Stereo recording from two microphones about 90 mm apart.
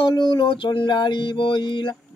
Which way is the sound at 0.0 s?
65° left (ahead or behind).